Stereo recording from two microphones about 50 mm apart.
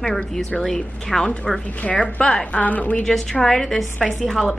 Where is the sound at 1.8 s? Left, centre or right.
Left.